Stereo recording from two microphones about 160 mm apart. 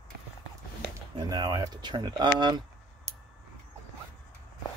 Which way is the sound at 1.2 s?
25° right (ahead or behind).